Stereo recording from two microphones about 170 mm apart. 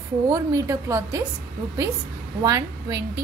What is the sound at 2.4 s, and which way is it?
Speech, 20° right (ahead or behind).